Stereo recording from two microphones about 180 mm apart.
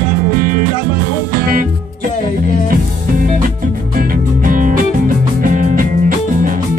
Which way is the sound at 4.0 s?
50° right (ahead or behind).